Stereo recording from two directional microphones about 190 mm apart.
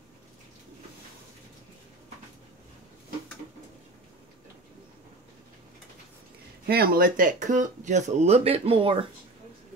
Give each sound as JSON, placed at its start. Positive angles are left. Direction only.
{"t": 6.6, "sound": "speech", "side_deg": -55}